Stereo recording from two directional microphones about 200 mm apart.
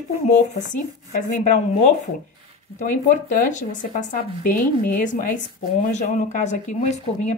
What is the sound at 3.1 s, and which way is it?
Speech, 40° left (ahead or behind).